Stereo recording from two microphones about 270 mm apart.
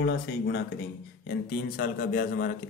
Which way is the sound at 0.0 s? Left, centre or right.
Left.